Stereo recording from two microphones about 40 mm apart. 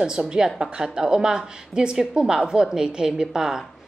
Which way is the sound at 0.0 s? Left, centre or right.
Right.